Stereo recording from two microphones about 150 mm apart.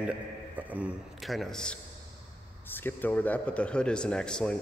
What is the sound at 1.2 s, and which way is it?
Speech, centre (ahead or behind).